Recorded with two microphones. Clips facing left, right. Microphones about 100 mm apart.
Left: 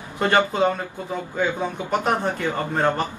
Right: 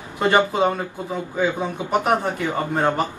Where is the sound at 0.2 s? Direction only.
15° right (ahead or behind).